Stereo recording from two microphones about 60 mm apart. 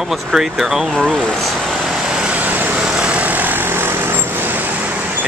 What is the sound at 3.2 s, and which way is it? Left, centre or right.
Vehicle, right.